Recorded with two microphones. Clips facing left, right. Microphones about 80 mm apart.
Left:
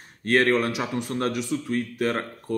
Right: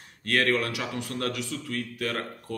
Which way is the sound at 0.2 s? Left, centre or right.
Left.